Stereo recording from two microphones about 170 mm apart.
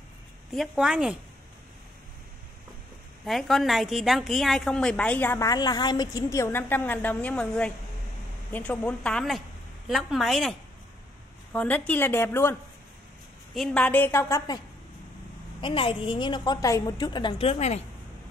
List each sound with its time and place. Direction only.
0.5 s a woman's voice: centre (ahead or behind)
3.3 s a woman's voice: centre (ahead or behind)
11.5 s a woman's voice: 10° left (ahead or behind)
13.6 s a woman's voice: 5° left (ahead or behind)
15.6 s a woman's voice: 30° left (ahead or behind)